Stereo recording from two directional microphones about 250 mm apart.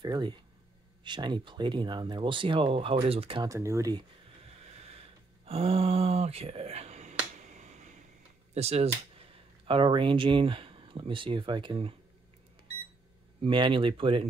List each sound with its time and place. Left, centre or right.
0.0 s speech: centre
4.8 s a sound: right
8.5 s speech: right
13.4 s speech: centre